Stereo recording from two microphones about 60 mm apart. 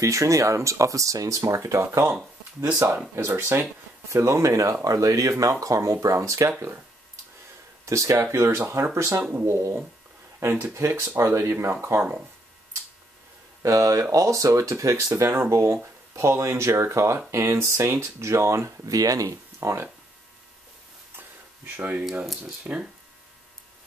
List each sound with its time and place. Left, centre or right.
0.0 s speech: right
1.9 s speech: right
7.8 s speech: right
13.6 s speech: right
15.3 s speech: right
18.9 s speech: right
21.2 s a sound: right
22.6 s speech: centre